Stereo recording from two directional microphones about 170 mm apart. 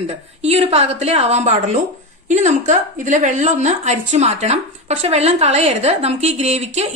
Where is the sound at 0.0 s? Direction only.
40° right (ahead or behind).